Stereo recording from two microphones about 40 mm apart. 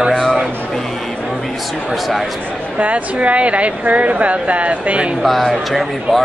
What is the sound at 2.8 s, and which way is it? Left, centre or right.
A woman's voice, right.